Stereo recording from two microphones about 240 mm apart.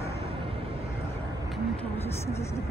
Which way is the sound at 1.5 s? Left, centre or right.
Centre.